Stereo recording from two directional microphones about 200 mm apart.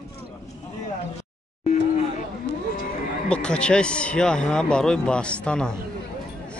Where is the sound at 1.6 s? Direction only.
35° left (ahead or behind).